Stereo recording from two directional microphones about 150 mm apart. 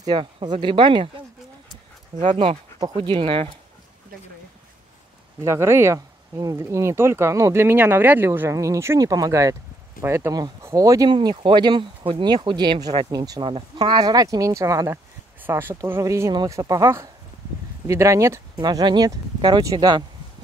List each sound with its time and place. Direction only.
0.0 s speech: 30° right (ahead or behind)
2.3 s speech: 35° right (ahead or behind)
5.4 s speech: 20° right (ahead or behind)